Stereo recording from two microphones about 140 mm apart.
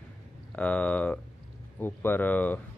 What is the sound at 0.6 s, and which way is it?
Speech, 10° left (ahead or behind).